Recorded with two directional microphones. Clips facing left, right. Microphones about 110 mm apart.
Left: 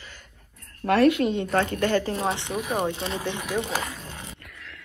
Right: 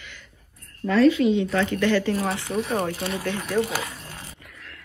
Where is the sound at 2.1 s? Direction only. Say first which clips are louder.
Right 1 dB; 25° left (ahead or behind).